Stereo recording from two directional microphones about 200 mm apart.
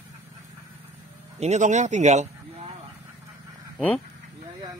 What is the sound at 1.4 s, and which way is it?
Speech, 35° right (ahead or behind).